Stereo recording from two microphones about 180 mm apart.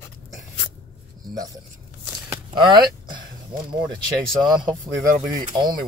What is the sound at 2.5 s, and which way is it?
Speech, 25° right (ahead or behind).